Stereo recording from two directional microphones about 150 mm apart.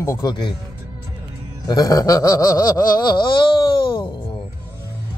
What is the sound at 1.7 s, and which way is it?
Snicker, 25° left (ahead or behind).